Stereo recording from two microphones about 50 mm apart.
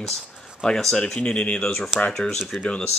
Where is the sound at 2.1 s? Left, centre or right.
Centre.